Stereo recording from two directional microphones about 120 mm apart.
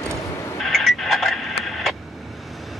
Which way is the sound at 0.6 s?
Centre (ahead or behind).